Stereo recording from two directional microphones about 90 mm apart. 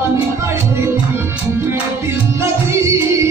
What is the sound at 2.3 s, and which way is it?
Music, 30° right (ahead or behind).